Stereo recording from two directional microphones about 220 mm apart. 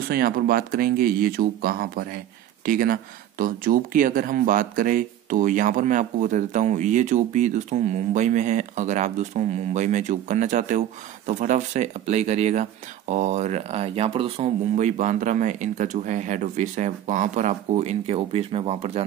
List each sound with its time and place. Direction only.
0.1 s speech: 40° right (ahead or behind); by 19.0 s 25° right (ahead or behind)